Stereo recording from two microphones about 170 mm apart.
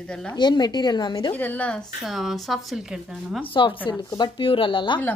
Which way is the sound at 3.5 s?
30° left (ahead or behind).